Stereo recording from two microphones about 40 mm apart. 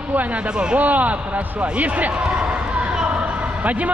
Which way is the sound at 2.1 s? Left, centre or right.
Right.